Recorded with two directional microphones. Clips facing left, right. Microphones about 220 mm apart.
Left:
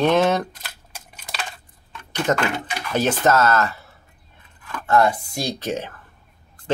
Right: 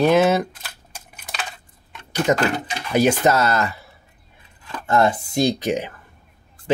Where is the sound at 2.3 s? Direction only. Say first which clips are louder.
Right 2 dB; 10° right (ahead or behind).